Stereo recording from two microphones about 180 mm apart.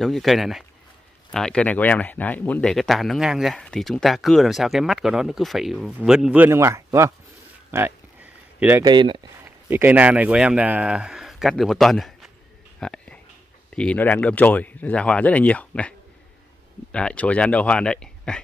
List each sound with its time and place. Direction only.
0.0 s speech: centre (ahead or behind); by 7.1 s 15° right (ahead or behind)
7.7 s a sound: 10° right (ahead or behind)
8.8 s speech: 25° right (ahead or behind)
9.4 s speech: 10° right (ahead or behind)
12.8 s a sound: 5° left (ahead or behind)
13.7 s speech: 10° left (ahead or behind)
16.9 s speech: 5° left (ahead or behind)